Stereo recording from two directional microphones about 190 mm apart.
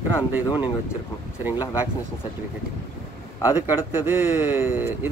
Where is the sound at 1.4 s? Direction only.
10° right (ahead or behind).